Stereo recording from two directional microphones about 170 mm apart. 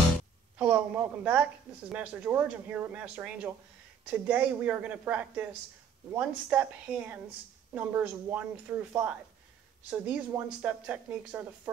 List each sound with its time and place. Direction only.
0.6 s speech: 5° right (ahead or behind)